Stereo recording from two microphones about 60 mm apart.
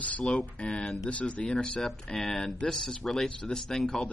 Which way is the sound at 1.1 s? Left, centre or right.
Left.